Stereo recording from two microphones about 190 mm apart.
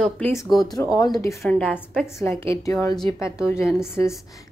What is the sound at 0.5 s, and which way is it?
A woman's voice, 20° left (ahead or behind).